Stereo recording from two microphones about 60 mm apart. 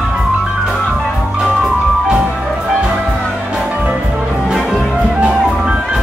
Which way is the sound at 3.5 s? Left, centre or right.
Right.